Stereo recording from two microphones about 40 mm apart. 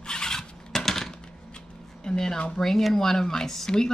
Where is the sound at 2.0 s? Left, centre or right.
Centre.